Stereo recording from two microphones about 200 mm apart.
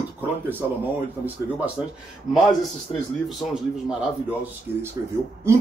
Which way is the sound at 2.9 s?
20° left (ahead or behind).